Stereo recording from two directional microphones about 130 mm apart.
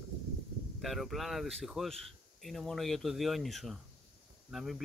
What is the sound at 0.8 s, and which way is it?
Speech, centre (ahead or behind).